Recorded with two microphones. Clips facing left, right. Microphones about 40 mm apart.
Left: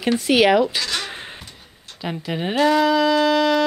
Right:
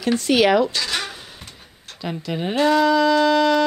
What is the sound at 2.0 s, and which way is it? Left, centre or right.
Speech, centre.